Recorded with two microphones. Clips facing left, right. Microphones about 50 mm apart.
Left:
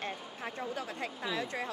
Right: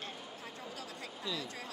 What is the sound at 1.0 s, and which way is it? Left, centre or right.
Speech, left.